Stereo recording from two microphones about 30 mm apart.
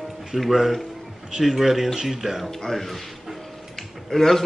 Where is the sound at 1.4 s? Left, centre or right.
Centre.